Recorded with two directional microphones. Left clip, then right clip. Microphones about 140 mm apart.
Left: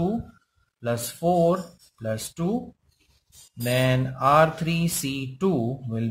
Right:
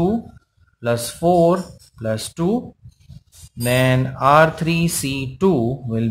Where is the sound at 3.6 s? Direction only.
15° right (ahead or behind).